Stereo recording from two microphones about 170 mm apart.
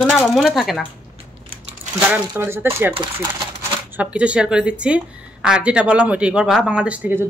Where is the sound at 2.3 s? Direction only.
15° right (ahead or behind).